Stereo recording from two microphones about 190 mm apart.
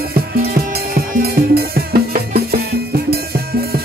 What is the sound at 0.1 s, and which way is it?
Music, 55° right (ahead or behind).